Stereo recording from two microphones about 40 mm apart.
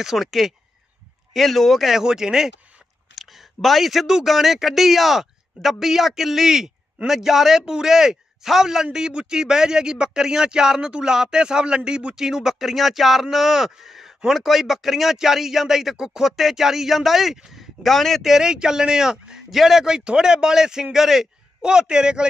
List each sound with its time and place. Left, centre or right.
0.0 s speech: centre
1.9 s speech: centre
3.2 s speech: centre; by 12.2 s right
12.2 s speech: centre
18.2 s speech: centre
21.6 s speech: right